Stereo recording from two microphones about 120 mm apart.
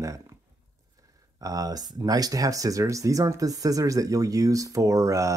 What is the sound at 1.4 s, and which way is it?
Speech, 30° right (ahead or behind).